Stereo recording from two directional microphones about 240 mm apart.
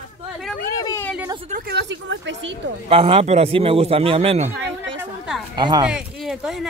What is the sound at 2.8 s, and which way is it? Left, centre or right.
Speech, right.